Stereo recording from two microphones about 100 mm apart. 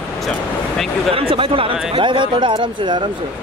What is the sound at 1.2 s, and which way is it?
Speech, 65° right (ahead or behind).